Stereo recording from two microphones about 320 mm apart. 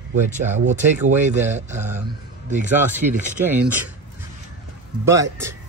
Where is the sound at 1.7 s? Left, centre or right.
Centre.